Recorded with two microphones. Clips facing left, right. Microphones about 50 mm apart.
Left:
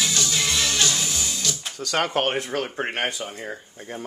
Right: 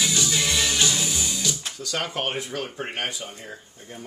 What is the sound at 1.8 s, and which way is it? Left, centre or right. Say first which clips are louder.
Speech: left 8 dB; left.